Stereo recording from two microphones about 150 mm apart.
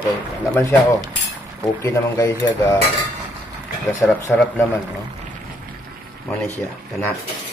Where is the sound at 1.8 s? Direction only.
20° left (ahead or behind).